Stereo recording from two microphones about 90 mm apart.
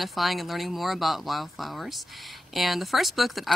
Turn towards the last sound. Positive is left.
turn(degrees=0)  # may be behind; listen again after turning